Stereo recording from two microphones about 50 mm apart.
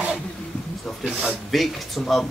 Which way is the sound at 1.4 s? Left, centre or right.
Centre.